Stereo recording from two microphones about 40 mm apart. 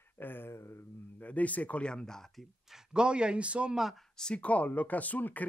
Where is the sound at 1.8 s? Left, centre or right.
Left.